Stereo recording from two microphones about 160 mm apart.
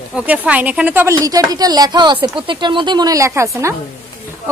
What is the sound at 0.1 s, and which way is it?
A woman's voice, 10° right (ahead or behind).